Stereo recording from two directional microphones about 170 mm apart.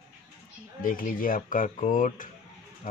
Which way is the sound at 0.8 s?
55° left (ahead or behind).